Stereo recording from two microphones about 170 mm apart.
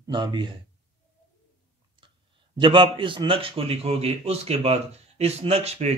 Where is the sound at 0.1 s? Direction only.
25° right (ahead or behind).